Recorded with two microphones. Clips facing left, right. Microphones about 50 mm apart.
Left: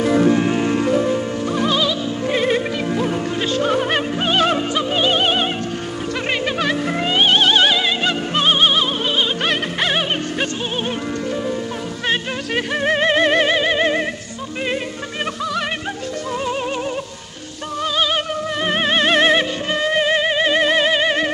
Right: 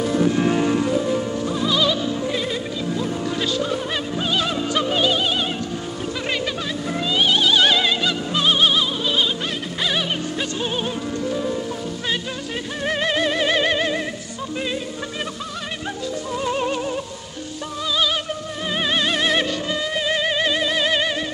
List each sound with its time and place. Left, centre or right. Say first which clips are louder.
0.0 s music: left 5 dB; left
0.4 s music: left 1 dB; centre
1.5 s music: left 2 dB; left
6.9 s music: left 1 dB; left
7.6 s music: left 1 dB; centre
8.0 s music: left 3 dB; left
12.8 s music: left 4 dB; left
13.5 s music: left 2 dB; centre
13.7 s music: left 4 dB; left
17.9 s music: left 2 dB; left
20.2 s music: left 3 dB; left
20.5 s music: left 6 dB; left
20.8 s music: left 3 dB; left